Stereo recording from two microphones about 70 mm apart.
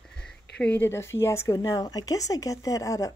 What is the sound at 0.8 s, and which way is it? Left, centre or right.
Speech, left.